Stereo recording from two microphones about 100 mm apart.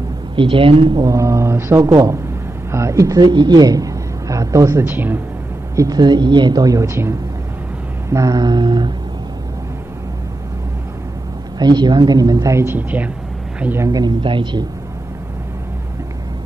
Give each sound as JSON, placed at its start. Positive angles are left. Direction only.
{"t": 0.4, "sound": "a woman's voice", "side_deg": -60}
{"t": 1.0, "sound": "a woman's voice", "side_deg": -35}
{"t": 4.8, "sound": "speech", "side_deg": -20}
{"t": 5.8, "sound": "a woman's voice", "side_deg": -45}
{"t": 8.1, "sound": "a sound", "side_deg": -35}
{"t": 11.5, "sound": "a woman's voice", "side_deg": -45}
{"t": 13.7, "sound": "a woman's voice", "side_deg": -40}
{"t": 14.2, "sound": "a sound", "side_deg": -55}